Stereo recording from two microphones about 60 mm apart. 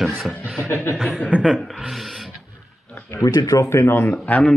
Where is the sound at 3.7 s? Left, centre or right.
Left.